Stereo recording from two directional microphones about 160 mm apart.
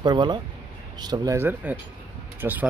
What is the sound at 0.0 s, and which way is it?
Speech, 25° right (ahead or behind).